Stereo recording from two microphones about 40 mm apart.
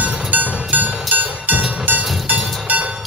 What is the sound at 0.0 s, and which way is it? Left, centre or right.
Music, right.